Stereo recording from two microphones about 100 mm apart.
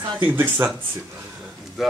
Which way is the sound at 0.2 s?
20° right (ahead or behind).